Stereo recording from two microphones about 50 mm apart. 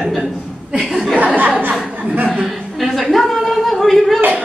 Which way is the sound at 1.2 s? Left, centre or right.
Right.